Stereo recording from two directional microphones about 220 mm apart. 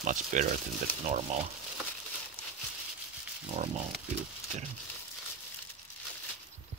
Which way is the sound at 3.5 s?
30° right (ahead or behind).